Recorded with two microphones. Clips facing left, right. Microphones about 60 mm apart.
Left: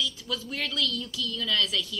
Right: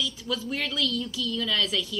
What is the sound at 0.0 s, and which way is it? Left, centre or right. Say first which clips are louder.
A woman's voice: right 2 dB; centre.